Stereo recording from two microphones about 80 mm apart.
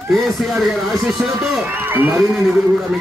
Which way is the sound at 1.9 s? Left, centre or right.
Right.